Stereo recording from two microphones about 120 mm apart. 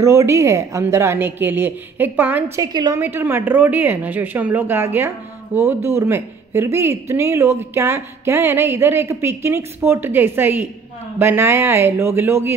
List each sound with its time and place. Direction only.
0.0 s speech: 25° right (ahead or behind)
2.5 s a woman's voice: 35° right (ahead or behind)
3.0 s speech: 20° right (ahead or behind)